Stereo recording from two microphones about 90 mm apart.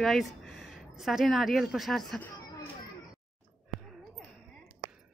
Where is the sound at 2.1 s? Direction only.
15° left (ahead or behind).